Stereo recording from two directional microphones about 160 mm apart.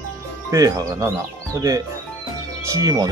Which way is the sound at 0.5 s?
20° right (ahead or behind).